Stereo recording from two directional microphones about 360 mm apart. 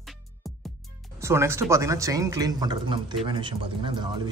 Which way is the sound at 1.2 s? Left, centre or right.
Centre.